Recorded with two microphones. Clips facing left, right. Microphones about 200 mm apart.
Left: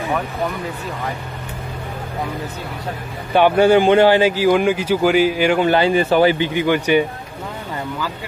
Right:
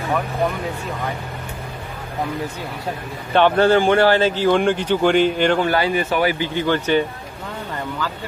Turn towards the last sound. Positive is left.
turn(degrees=15)  # may be behind; listen again after turning